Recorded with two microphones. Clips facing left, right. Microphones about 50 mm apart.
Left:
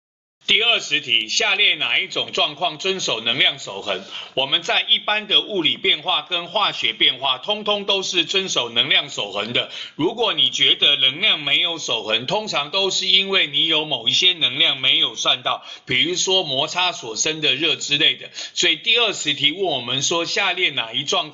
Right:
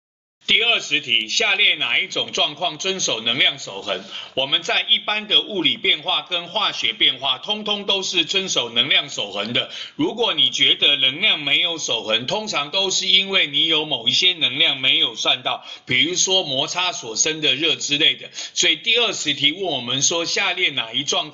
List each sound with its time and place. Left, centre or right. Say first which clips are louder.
0.5 s a man's voice: even; centre